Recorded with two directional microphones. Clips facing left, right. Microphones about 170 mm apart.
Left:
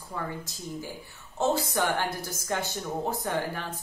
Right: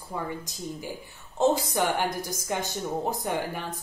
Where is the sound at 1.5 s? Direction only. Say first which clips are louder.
Right 1 dB; 15° right (ahead or behind).